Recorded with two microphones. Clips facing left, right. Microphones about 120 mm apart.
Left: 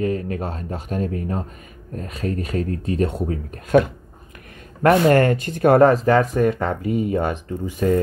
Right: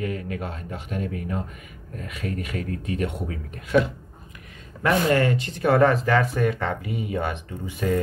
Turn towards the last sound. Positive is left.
turn(degrees=40)  # may be behind; listen again after turning